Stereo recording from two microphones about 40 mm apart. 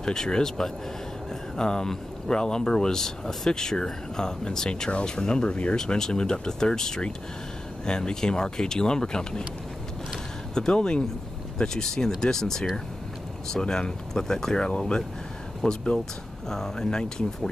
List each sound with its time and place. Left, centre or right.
0.0 s speech: centre
5.8 s speech: centre
10.5 s speech: centre